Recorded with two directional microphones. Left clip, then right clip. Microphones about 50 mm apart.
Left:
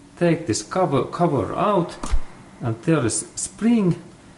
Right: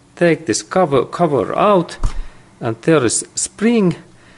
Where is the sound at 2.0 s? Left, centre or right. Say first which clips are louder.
Even; centre.